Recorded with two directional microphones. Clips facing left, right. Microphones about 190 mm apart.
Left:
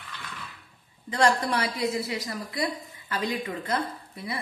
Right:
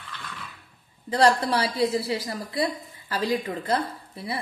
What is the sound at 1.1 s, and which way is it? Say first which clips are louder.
A woman's voice: right 3 dB; 35° right (ahead or behind).